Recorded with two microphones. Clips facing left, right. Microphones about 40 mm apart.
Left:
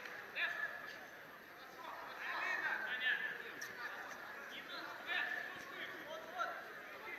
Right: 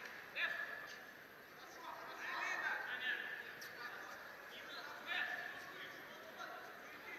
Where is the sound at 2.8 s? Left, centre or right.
Left.